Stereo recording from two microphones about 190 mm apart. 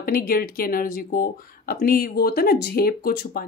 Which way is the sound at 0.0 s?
50° left (ahead or behind).